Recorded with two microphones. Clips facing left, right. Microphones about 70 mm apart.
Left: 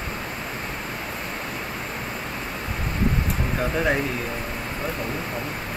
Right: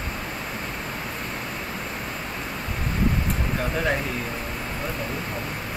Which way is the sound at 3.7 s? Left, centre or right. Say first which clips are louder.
Left 2 dB; centre.